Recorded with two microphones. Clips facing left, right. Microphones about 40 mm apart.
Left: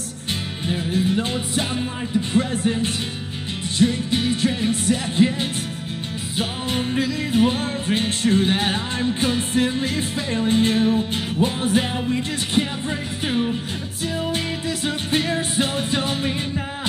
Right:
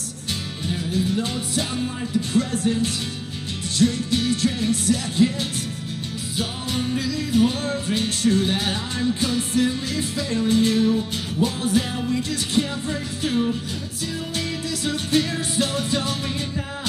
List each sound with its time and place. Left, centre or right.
0.7 s music: left